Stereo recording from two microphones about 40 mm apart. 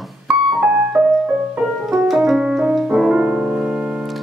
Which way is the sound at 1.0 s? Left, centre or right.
Centre.